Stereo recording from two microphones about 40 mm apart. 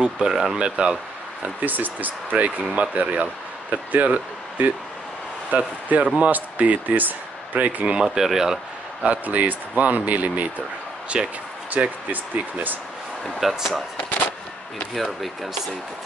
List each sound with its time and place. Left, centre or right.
0.0 s speech: centre
0.6 s speech: right
1.4 s speech: right
7.8 s speech: right
8.2 s speech: centre
9.0 s speech: right
11.1 s speech: centre
11.8 s speech: right
13.2 s speech: centre
15.0 s speech: centre